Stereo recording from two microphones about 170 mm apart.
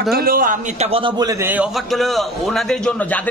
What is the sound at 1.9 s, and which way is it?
Speech, centre (ahead or behind).